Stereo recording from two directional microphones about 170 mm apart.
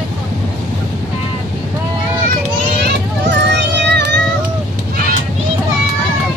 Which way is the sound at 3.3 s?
90° right.